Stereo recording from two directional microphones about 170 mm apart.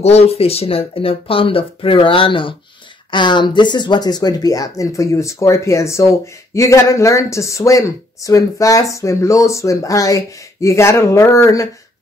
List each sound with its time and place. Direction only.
0.0 s speech: 35° left (ahead or behind); by 11.6 s 20° left (ahead or behind)